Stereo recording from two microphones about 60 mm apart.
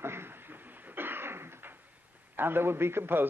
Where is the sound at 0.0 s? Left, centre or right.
Right.